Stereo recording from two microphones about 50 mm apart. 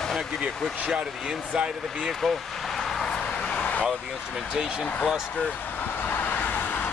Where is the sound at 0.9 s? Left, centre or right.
Centre.